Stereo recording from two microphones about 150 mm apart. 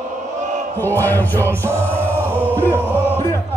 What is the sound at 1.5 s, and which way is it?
Music, 20° right (ahead or behind).